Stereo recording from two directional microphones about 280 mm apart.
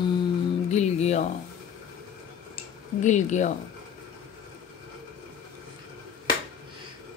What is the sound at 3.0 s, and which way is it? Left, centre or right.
Speech, left.